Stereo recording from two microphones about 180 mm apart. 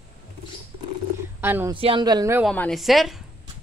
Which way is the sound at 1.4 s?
10° right (ahead or behind).